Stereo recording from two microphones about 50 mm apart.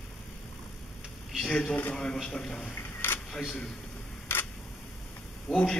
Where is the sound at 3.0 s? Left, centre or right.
Left.